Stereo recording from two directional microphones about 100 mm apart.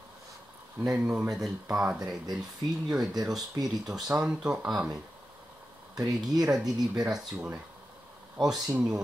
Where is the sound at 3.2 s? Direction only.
Centre (ahead or behind).